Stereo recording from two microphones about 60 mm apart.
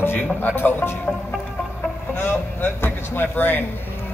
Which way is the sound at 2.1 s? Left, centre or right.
Left.